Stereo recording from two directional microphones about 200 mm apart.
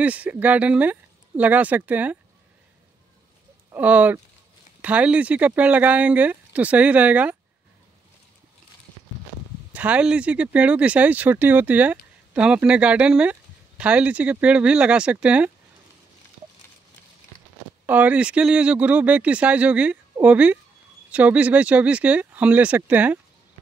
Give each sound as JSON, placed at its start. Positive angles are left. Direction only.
{"t": 0.0, "sound": "speech", "side_deg": -5}
{"t": 3.7, "sound": "speech", "side_deg": -10}
{"t": 9.7, "sound": "speech", "side_deg": -5}
{"t": 17.8, "sound": "speech", "side_deg": -10}